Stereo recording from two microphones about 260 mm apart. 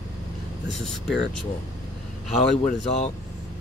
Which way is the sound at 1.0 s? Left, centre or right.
Left.